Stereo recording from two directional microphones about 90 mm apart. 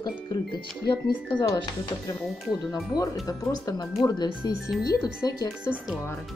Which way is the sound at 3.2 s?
40° left (ahead or behind).